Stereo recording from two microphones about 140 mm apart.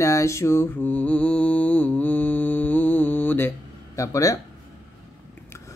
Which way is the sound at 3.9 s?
25° left (ahead or behind).